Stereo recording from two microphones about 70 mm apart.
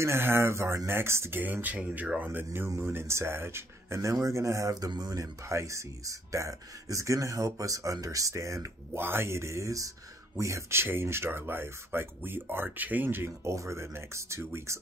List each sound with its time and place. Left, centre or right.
0.0 s speech: right
1.4 s speech: right
4.7 s speech: right
5.4 s speech: right
8.9 s speech: right